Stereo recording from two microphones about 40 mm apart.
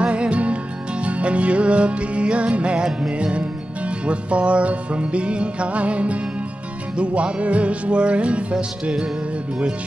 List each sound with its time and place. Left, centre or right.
0.0 s music: right